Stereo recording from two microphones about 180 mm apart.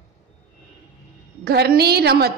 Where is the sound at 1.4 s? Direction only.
60° right (ahead or behind).